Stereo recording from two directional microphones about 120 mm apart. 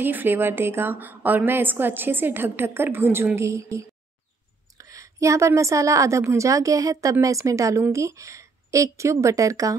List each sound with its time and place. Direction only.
0.0 s a woman's voice: 15° right (ahead or behind)